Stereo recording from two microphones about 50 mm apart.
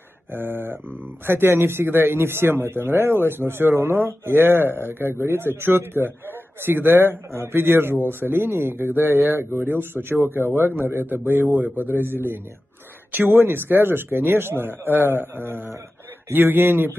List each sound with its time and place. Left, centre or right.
0.3 s a man's voice: right